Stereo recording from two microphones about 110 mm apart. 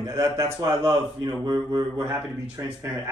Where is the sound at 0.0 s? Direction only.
35° right (ahead or behind).